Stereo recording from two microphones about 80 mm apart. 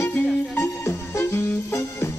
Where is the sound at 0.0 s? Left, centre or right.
Left.